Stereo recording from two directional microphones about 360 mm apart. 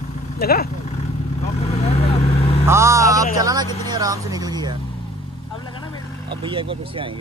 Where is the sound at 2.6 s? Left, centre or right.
Centre.